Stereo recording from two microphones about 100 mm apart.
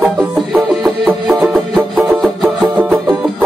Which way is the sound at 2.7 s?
15° right (ahead or behind).